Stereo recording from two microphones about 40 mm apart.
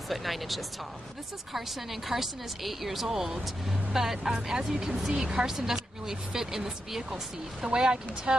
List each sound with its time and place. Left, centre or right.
0.1 s a woman's voice: centre